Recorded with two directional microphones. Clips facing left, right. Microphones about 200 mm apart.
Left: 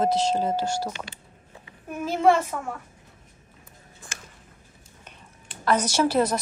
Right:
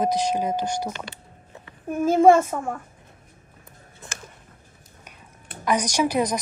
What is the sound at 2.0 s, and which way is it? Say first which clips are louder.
Speech: right 5 dB; 50° right (ahead or behind).